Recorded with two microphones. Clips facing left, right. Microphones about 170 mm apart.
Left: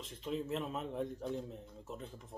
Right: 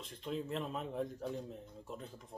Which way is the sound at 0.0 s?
Centre (ahead or behind).